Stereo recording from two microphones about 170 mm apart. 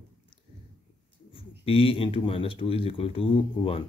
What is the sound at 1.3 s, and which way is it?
Speech, 30° left (ahead or behind).